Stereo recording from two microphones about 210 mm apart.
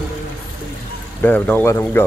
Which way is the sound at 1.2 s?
10° left (ahead or behind).